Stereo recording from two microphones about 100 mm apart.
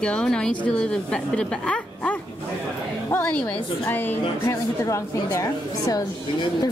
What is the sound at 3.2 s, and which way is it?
A woman's voice, 15° left (ahead or behind).